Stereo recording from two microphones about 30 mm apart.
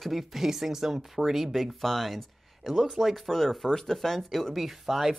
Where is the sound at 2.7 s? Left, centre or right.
Centre.